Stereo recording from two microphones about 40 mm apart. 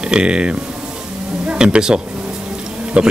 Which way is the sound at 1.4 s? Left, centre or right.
Right.